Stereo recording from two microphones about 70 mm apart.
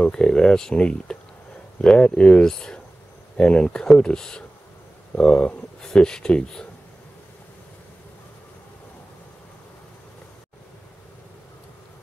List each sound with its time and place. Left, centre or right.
0.0 s speech: centre